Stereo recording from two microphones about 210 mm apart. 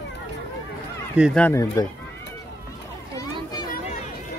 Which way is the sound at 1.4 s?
15° left (ahead or behind).